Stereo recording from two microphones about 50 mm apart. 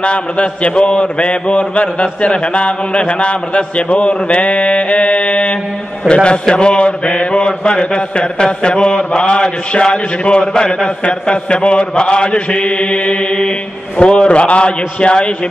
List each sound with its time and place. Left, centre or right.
0.0 s mantra: left